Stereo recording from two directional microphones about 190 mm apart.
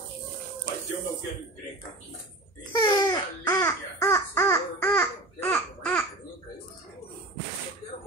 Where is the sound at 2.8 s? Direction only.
25° left (ahead or behind).